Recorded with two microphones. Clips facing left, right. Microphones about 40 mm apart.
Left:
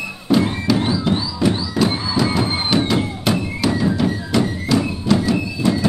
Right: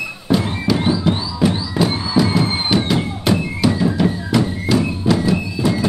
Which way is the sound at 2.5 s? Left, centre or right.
Centre.